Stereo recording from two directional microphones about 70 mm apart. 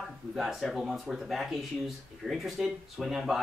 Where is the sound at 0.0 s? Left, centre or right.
Centre.